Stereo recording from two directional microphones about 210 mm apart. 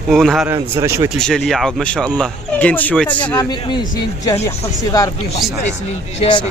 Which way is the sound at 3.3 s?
20° left (ahead or behind).